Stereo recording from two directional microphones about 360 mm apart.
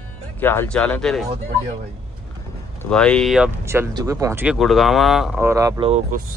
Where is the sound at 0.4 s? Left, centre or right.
Centre.